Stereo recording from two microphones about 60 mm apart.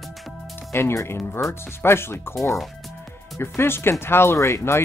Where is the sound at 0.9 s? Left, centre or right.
Left.